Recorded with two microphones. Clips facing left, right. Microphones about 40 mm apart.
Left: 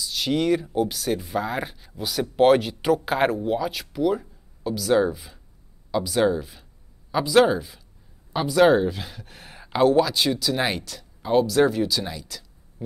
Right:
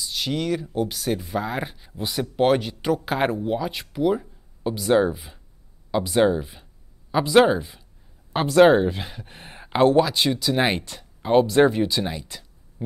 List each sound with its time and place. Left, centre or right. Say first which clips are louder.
0.0 s speech: left 3 dB; centre
2.0 s speech: even; centre
2.3 s speech: left 3 dB; centre; by 12.4 s right